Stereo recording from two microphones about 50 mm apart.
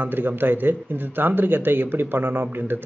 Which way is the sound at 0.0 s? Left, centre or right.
Right.